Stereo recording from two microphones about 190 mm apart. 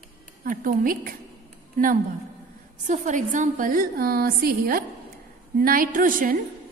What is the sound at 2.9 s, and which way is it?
A woman's voice, 40° right (ahead or behind).